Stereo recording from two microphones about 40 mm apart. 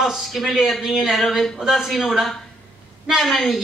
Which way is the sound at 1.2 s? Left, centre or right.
Centre.